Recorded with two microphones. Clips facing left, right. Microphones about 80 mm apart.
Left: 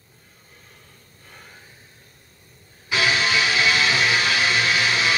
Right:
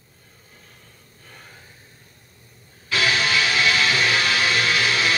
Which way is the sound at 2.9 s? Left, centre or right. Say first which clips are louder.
Even; centre.